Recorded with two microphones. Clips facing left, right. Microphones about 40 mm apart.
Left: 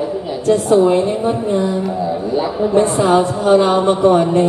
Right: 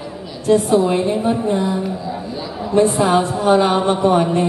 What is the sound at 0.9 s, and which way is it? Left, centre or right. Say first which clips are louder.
Speech: left 2 dB; centre.